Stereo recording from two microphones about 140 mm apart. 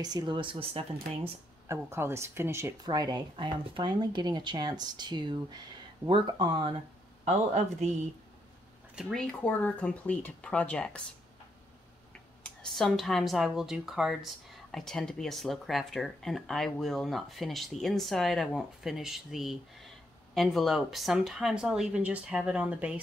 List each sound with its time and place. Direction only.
0.0 s speech: 30° right (ahead or behind)
1.7 s speech: 20° right (ahead or behind)
2.8 s speech: 30° right (ahead or behind)
7.2 s speech: 55° right (ahead or behind)
8.9 s speech: 5° left (ahead or behind)
12.4 s speech: 5° left (ahead or behind)